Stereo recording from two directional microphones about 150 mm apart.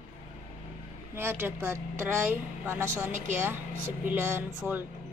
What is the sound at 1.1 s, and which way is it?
A woman's voice, 15° right (ahead or behind).